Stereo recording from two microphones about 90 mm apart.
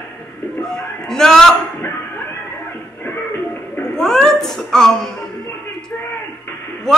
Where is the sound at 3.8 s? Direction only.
5° left (ahead or behind).